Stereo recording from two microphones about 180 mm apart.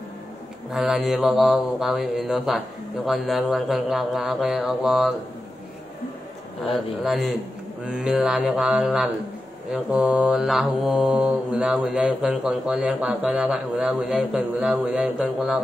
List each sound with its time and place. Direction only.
0.7 s mantra: centre (ahead or behind)
6.6 s mantra: centre (ahead or behind)